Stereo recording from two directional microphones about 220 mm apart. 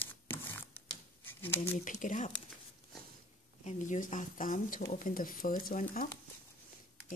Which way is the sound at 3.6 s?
35° left (ahead or behind).